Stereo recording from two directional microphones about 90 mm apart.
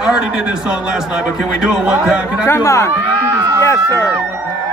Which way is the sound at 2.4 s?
30° left (ahead or behind).